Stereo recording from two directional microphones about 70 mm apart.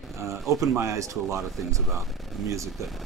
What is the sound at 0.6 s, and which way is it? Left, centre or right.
Speech, right.